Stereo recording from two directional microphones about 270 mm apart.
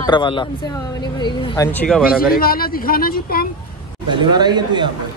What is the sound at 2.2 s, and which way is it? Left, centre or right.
Speech, left.